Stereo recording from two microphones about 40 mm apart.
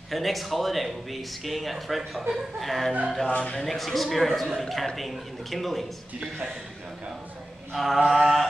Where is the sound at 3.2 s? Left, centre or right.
Left.